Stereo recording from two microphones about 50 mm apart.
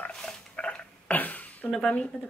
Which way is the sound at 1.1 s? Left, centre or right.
Left.